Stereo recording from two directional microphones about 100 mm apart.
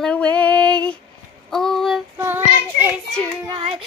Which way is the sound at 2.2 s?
20° right (ahead or behind).